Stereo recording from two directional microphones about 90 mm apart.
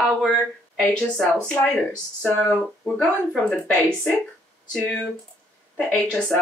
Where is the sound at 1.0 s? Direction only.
10° left (ahead or behind).